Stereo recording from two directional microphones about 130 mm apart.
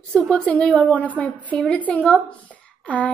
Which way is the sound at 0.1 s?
Centre (ahead or behind).